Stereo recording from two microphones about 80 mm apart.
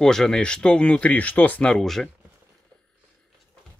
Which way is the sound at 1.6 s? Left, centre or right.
Centre.